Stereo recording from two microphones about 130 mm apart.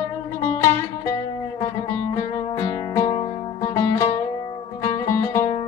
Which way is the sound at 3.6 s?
25° left (ahead or behind).